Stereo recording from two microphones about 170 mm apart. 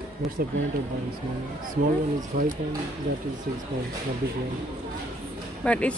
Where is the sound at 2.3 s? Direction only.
55° right (ahead or behind).